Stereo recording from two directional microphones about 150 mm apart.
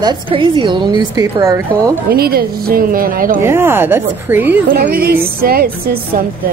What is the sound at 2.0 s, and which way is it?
A woman's voice, 90° right.